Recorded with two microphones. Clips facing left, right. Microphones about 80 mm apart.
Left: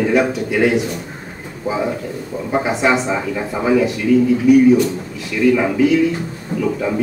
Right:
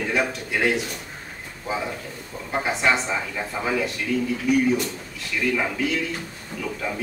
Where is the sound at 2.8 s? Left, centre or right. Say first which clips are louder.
Left 6 dB; centre.